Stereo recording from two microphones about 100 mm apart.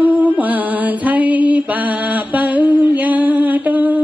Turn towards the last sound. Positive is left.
turn(degrees=-15)  # may be behind; listen again after turning